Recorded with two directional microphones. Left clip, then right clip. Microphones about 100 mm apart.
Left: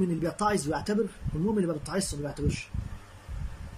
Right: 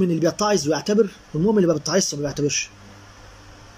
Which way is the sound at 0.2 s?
20° right (ahead or behind).